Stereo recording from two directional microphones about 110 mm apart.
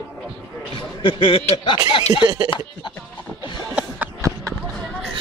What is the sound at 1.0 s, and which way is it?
A man's voice, 50° left (ahead or behind).